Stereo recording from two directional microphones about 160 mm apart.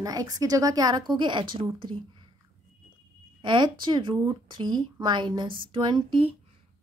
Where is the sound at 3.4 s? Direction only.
30° right (ahead or behind).